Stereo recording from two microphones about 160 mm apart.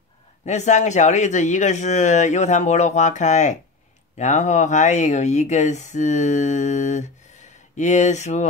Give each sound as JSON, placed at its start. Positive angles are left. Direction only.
{"t": 0.5, "sound": "speech", "side_deg": 45}